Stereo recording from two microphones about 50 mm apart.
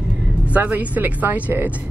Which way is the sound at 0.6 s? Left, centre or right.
Right.